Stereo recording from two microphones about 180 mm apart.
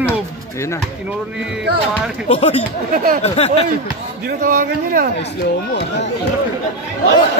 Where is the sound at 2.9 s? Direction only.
55° right (ahead or behind).